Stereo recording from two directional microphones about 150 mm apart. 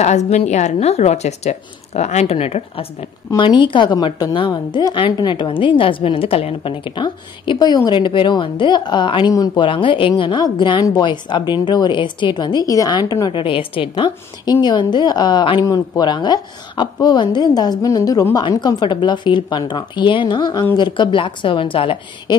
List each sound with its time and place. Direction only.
0.0 s speech: 50° left (ahead or behind)
3.3 s a woman's voice: 30° left (ahead or behind)